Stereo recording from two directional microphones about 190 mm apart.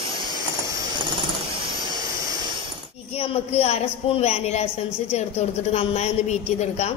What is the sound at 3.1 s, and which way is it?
A woman's voice, 30° left (ahead or behind).